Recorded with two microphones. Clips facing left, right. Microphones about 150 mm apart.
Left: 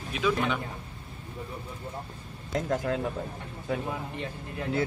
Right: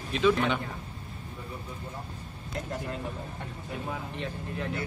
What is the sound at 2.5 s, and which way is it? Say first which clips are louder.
Speech: left 7 dB; 90° left.